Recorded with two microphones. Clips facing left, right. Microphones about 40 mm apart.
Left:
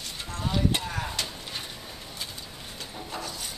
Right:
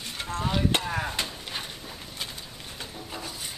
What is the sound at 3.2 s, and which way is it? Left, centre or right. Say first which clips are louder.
Wood: left 1 dB; centre.